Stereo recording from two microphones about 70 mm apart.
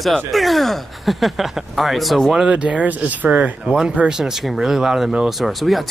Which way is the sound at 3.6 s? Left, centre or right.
Centre.